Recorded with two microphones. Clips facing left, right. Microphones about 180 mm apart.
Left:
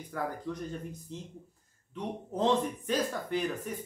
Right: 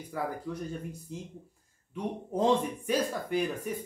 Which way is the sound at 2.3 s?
10° right (ahead or behind).